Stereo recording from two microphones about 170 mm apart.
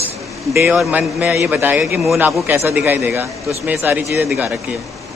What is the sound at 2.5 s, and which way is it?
A man's voice, 10° right (ahead or behind).